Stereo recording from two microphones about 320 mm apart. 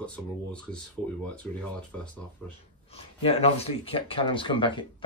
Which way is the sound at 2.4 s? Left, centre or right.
Centre.